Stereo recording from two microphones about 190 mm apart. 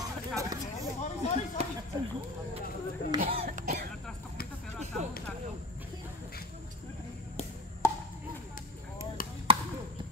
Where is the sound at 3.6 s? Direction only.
55° right (ahead or behind).